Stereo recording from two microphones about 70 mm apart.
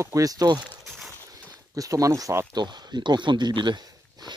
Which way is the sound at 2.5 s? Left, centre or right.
Right.